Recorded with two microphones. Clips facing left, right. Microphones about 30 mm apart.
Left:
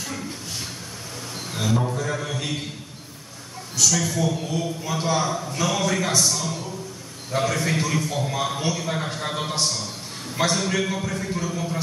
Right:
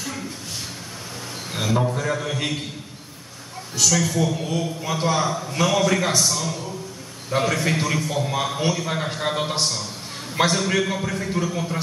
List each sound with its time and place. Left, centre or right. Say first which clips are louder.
0.0 s a sound: right 1 dB; centre
1.5 s a man's voice: right 2 dB; centre
3.8 s a man's voice: right 1 dB; centre